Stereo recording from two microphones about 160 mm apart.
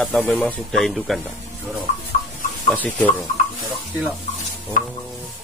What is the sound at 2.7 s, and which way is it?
Speech, 10° left (ahead or behind).